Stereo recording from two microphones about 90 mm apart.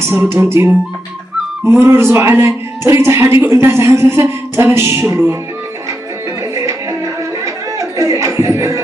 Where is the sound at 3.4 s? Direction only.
30° right (ahead or behind).